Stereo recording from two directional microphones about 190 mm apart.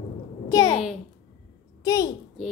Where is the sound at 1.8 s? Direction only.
20° left (ahead or behind).